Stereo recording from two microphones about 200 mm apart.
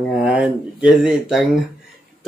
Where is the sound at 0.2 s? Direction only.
5° right (ahead or behind).